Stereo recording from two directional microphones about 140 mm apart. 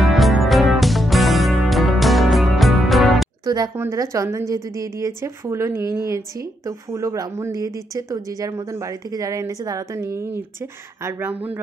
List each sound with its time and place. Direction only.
0.0 s music: centre (ahead or behind)
3.4 s a woman's voice: 30° right (ahead or behind)